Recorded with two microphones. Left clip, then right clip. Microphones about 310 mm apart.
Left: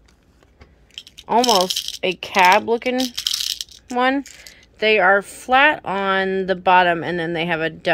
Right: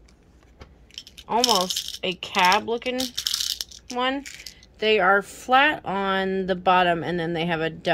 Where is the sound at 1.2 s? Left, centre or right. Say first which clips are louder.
Left 5 dB; centre.